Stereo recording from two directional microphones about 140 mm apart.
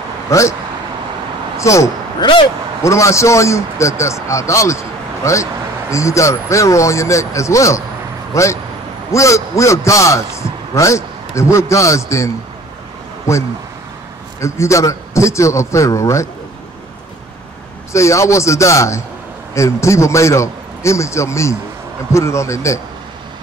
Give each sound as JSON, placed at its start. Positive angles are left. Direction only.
{"t": 0.3, "sound": "a man's voice", "side_deg": 20}
{"t": 1.6, "sound": "a man's voice", "side_deg": 20}
{"t": 13.3, "sound": "a man's voice", "side_deg": 20}
{"t": 17.9, "sound": "a man's voice", "side_deg": 20}